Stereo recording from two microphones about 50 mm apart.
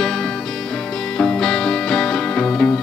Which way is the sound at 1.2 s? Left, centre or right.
Centre.